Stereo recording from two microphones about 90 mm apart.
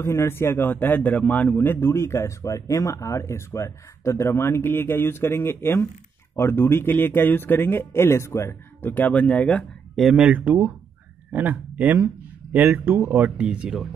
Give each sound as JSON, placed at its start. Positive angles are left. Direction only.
{"t": 0.0, "sound": "a man's voice", "side_deg": 30}
{"t": 9.9, "sound": "speech", "side_deg": -5}
{"t": 13.4, "sound": "speech", "side_deg": -10}